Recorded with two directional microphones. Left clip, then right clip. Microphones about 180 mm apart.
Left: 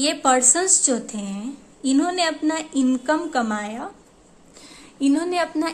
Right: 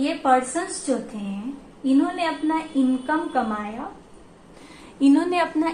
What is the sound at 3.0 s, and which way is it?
Speech, 65° left (ahead or behind).